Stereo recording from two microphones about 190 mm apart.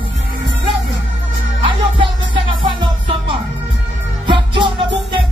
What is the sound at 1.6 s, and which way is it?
Music, 25° right (ahead or behind).